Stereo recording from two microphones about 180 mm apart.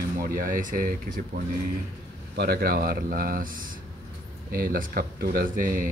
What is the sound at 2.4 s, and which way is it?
Speech, 60° right (ahead or behind).